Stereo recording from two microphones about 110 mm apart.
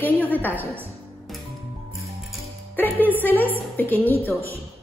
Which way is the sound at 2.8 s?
15° left (ahead or behind).